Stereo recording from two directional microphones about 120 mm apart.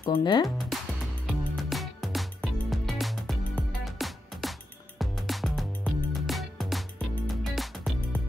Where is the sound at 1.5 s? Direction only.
Centre (ahead or behind).